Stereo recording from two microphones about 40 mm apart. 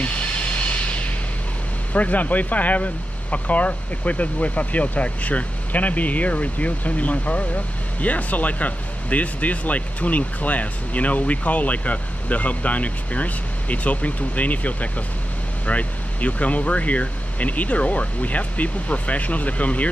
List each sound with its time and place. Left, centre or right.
0.0 s music: left
2.0 s speech: left